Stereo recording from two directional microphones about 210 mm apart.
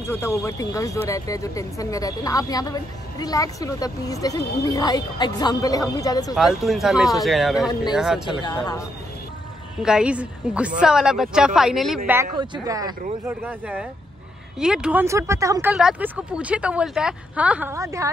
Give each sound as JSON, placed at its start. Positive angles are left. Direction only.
{"t": 0.1, "sound": "speech", "side_deg": 15}
{"t": 6.3, "sound": "speech", "side_deg": 0}
{"t": 8.4, "sound": "speech", "side_deg": 20}
{"t": 9.8, "sound": "speech", "side_deg": -5}
{"t": 12.1, "sound": "speech", "side_deg": -15}
{"t": 15.7, "sound": "speech", "side_deg": -5}